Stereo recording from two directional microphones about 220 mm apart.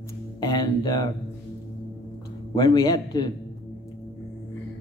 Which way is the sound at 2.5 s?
15° left (ahead or behind).